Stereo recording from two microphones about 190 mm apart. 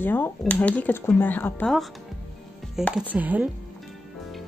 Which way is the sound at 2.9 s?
10° right (ahead or behind).